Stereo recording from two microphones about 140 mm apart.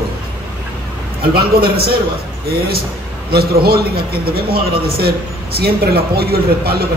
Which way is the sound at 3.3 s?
90° right.